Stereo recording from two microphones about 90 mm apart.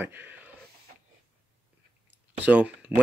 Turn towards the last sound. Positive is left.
turn(degrees=-15)  # may be behind; listen again after turning